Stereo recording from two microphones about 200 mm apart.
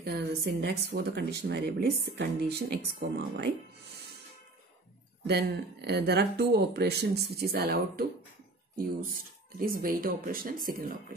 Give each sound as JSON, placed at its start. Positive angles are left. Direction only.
{"t": 0.0, "sound": "speech", "side_deg": -50}
{"t": 5.2, "sound": "speech", "side_deg": -55}